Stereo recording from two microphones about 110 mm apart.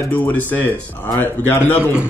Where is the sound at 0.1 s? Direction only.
15° left (ahead or behind).